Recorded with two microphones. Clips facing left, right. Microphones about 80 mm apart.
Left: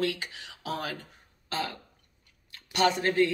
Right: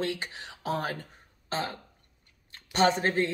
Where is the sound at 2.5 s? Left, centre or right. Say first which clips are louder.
Right 1 dB; right.